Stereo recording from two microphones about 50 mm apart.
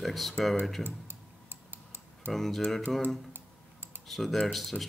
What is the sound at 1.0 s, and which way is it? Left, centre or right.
Typing, right.